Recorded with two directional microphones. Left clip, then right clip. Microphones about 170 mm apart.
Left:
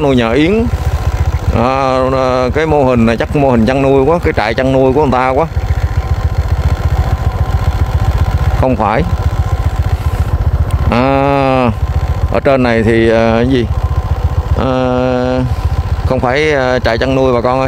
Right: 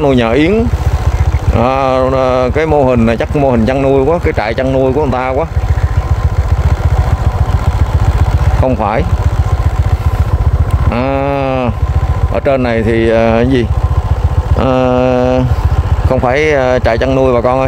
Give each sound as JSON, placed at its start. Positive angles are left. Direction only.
{"t": 0.0, "sound": "a sound", "side_deg": 5}
{"t": 1.5, "sound": "speech", "side_deg": 5}
{"t": 8.6, "sound": "speech", "side_deg": 15}
{"t": 10.9, "sound": "livestock", "side_deg": 20}
{"t": 12.4, "sound": "speech", "side_deg": 20}
{"t": 14.6, "sound": "a sound", "side_deg": 0}
{"t": 16.1, "sound": "speech", "side_deg": 5}